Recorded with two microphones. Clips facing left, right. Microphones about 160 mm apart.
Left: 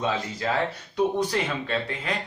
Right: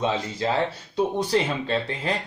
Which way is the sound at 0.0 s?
25° right (ahead or behind).